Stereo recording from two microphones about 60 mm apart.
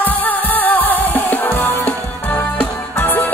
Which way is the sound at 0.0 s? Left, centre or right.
Left.